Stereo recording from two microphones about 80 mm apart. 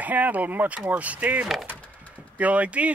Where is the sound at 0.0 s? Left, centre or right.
Centre.